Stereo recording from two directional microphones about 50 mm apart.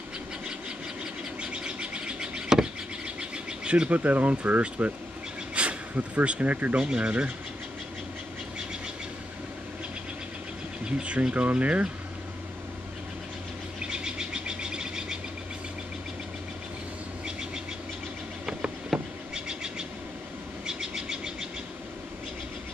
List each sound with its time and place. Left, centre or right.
1.4 s bird: centre
4.0 s speech: right
6.8 s speech: centre
10.9 s speech: right
13.8 s bird: centre
18.4 s vehicle: centre
20.6 s a sound: centre